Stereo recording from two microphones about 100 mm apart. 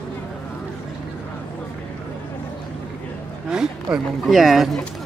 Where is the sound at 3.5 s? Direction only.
10° right (ahead or behind).